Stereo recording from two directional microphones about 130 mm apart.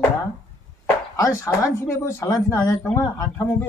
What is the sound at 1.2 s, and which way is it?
Speech, 25° left (ahead or behind).